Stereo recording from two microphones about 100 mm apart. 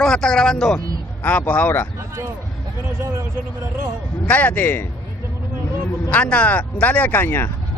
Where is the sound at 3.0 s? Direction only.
25° right (ahead or behind).